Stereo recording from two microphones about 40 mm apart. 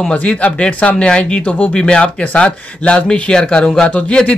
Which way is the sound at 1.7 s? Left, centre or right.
Left.